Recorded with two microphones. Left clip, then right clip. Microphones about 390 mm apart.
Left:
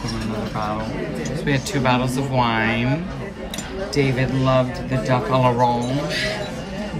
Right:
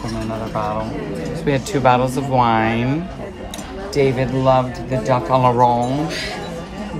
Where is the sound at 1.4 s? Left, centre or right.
Centre.